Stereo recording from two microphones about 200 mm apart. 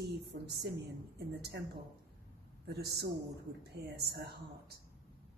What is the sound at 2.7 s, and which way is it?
A woman's voice, 55° right (ahead or behind).